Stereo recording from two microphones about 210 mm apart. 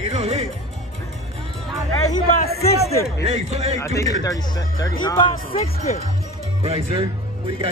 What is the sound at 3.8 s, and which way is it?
Speech, 15° left (ahead or behind).